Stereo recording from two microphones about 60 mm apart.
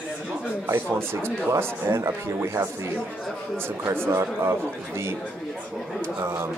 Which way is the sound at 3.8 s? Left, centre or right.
Right.